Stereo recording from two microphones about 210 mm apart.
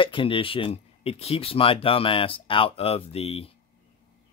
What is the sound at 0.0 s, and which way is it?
Speech, 25° left (ahead or behind).